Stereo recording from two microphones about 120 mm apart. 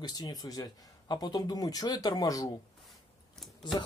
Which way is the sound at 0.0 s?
35° left (ahead or behind).